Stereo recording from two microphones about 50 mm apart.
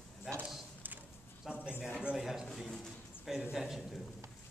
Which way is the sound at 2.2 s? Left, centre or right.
Centre.